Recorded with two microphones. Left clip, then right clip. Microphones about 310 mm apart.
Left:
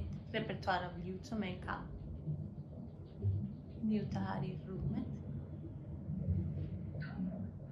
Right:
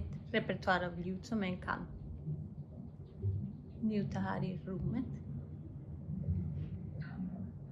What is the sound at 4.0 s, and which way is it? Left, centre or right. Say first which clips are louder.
A woman's voice: right 2 dB; right.